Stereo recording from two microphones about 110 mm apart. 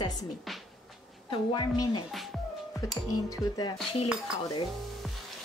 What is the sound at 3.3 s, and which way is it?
Speech, 40° left (ahead or behind).